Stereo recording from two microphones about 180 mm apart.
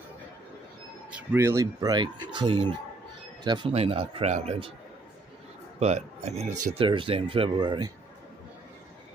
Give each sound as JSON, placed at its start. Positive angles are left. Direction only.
{"t": 1.1, "sound": "speech", "side_deg": -15}
{"t": 5.8, "sound": "speech", "side_deg": -40}